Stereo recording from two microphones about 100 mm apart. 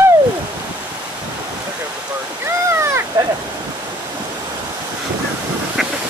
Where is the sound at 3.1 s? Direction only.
40° right (ahead or behind).